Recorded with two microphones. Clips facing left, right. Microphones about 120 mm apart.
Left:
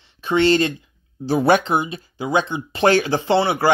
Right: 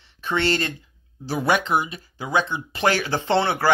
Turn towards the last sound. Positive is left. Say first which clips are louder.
# left 3 dB
turn(degrees=15)  # may be behind; listen again after turning